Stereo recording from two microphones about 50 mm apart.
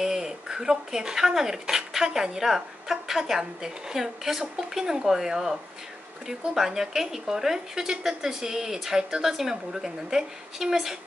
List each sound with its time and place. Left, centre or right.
0.0 s speech: centre